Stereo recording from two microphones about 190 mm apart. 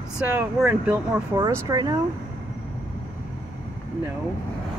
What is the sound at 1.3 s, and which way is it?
Speech, 20° right (ahead or behind).